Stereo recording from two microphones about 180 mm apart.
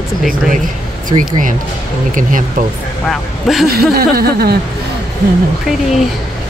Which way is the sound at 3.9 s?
60° right (ahead or behind).